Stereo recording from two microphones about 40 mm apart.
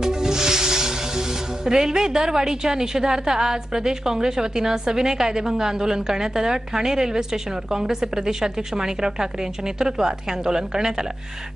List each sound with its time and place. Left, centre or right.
0.0 s a woman's voice: centre